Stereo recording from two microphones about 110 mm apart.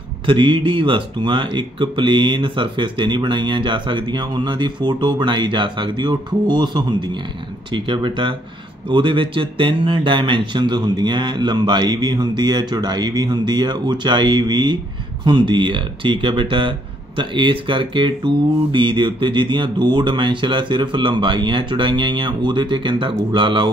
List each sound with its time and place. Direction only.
0.3 s speech: 50° right (ahead or behind)